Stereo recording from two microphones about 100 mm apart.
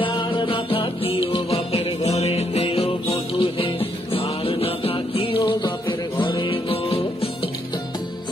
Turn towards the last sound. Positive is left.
turn(degrees=75)  # may be behind; listen again after turning